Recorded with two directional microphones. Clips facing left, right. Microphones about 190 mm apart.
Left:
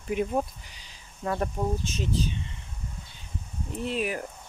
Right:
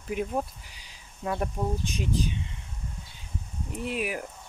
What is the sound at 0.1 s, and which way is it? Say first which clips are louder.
Speech: left 2 dB; centre (ahead or behind).